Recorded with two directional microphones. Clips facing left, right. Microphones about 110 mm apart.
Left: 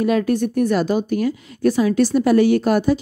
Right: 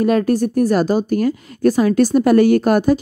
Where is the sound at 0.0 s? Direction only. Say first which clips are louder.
Right 3 dB; 45° right (ahead or behind).